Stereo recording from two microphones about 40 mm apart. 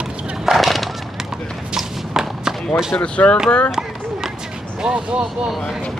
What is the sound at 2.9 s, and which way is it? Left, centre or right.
Speech, left.